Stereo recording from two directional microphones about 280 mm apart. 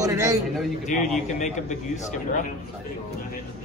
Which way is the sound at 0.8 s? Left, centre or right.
Left.